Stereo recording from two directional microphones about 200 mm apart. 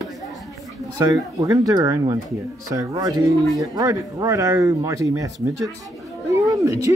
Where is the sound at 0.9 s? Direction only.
15° right (ahead or behind).